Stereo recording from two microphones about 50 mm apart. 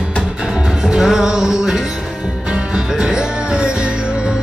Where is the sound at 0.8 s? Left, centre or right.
Centre.